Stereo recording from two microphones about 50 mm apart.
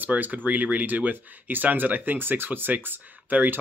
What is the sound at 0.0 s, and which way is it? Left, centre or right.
Speech, right.